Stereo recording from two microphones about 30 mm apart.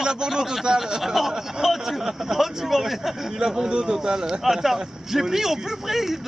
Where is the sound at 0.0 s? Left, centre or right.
Right.